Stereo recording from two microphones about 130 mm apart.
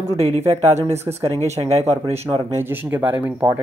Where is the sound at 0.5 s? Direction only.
55° right (ahead or behind).